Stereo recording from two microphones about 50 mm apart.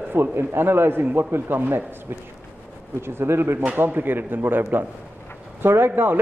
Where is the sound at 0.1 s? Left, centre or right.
Right.